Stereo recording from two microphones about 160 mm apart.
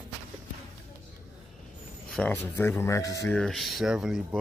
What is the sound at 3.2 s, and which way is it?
Speech, 5° left (ahead or behind).